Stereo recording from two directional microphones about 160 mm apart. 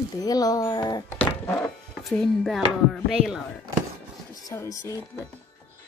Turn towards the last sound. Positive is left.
turn(degrees=20)  # may be behind; listen again after turning